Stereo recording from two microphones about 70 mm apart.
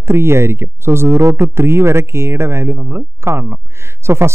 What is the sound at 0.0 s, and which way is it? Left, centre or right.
Speech, right.